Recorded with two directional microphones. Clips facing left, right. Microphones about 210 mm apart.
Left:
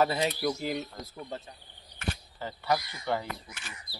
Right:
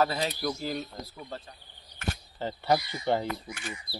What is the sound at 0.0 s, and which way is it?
Speech, 20° left (ahead or behind).